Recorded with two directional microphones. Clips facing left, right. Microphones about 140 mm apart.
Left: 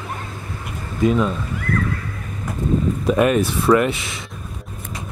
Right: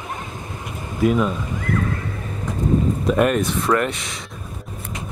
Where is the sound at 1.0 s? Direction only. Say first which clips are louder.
Even; 5° right (ahead or behind).